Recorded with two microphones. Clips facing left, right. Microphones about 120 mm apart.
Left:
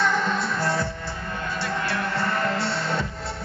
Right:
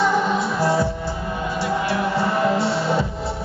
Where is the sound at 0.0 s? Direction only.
5° right (ahead or behind).